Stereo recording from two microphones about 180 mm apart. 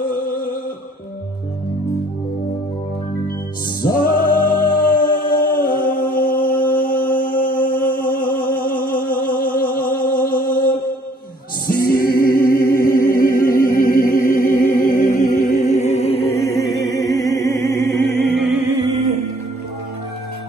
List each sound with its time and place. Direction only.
0.0 s music: 50° left (ahead or behind)
3.8 s music: 55° left (ahead or behind)
7.2 s a sound: 50° left (ahead or behind)
11.6 s music: 55° left (ahead or behind); by 16.3 s 35° left (ahead or behind)
16.3 s music: centre (ahead or behind)
16.7 s music: 20° left (ahead or behind)
18.2 s music: centre (ahead or behind)
18.8 s music: 35° right (ahead or behind)